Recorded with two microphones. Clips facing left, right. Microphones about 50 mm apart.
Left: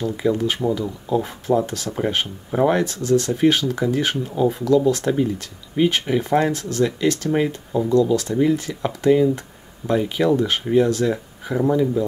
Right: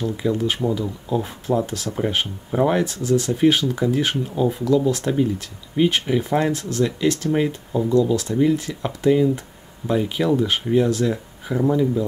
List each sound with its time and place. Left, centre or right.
0.0 s speech: centre